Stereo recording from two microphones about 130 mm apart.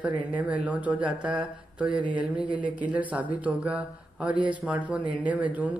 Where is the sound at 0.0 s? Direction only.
10° right (ahead or behind).